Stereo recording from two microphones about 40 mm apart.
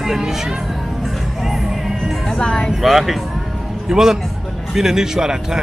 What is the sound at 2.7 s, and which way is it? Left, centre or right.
A man's voice, centre.